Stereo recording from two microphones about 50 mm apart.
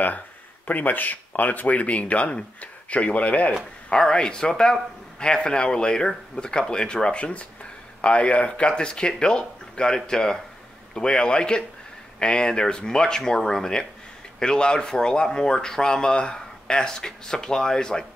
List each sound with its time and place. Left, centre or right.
0.7 s speech: left
3.9 s speech: centre